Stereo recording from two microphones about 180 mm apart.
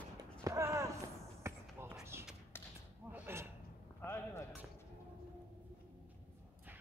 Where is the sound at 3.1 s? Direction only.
10° right (ahead or behind).